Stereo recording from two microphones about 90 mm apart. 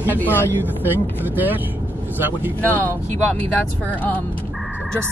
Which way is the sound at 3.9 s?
20° left (ahead or behind).